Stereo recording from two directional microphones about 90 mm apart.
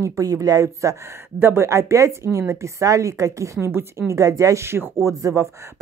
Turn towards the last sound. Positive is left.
turn(degrees=-35)  # may be behind; listen again after turning